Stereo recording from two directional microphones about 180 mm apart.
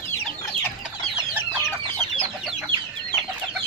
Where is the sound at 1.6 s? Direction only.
15° left (ahead or behind).